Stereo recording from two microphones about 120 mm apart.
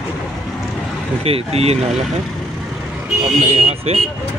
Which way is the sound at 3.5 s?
60° right (ahead or behind).